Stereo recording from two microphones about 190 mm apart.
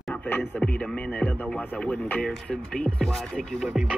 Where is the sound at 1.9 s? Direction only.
5° left (ahead or behind).